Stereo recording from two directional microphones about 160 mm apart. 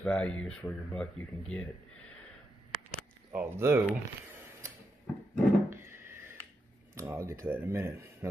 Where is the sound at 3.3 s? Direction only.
15° right (ahead or behind).